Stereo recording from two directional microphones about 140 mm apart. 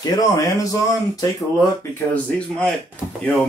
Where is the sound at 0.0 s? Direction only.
25° left (ahead or behind).